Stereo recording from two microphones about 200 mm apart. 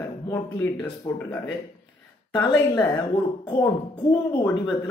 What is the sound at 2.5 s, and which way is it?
Speech, 15° left (ahead or behind).